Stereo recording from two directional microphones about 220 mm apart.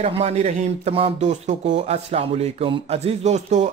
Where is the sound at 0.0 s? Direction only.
30° right (ahead or behind).